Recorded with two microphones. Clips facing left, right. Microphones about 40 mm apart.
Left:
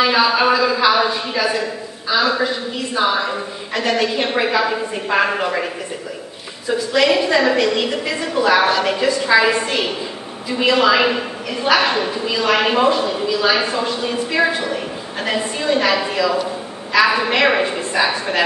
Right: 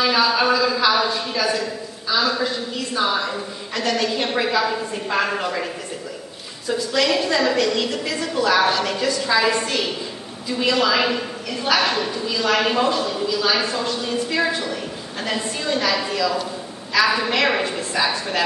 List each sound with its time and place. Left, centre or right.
0.0 s a man's voice: centre
6.7 s a man's voice: centre